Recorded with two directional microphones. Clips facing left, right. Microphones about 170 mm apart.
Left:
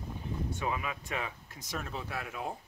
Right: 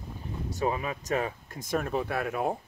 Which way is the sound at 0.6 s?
35° right (ahead or behind).